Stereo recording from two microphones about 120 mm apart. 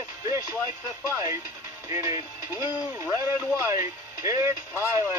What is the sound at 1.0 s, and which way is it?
Speech, 25° right (ahead or behind).